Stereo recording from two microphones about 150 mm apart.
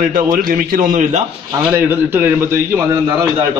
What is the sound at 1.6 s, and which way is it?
A man's voice, 15° right (ahead or behind).